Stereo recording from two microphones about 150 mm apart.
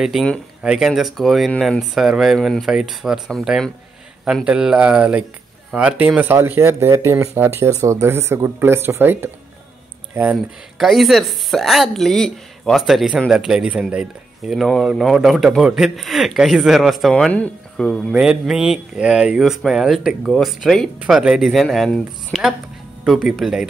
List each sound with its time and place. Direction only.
0.0 s speech: centre (ahead or behind)
10.3 s speech: centre (ahead or behind)